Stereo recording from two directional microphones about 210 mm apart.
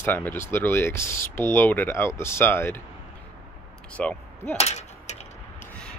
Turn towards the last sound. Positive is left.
turn(degrees=35)  # may be behind; listen again after turning